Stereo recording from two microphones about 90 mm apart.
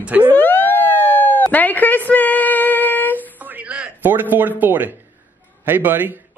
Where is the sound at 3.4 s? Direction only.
15° right (ahead or behind).